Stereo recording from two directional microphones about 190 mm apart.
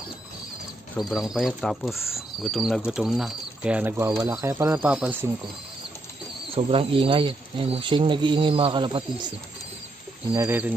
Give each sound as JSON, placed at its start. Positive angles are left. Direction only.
{"t": 0.9, "sound": "speech", "side_deg": 0}
{"t": 4.8, "sound": "speech", "side_deg": -5}
{"t": 6.5, "sound": "speech", "side_deg": -30}
{"t": 10.3, "sound": "speech", "side_deg": -15}